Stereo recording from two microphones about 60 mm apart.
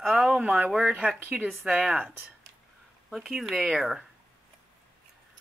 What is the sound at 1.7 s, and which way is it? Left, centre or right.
Speech, centre.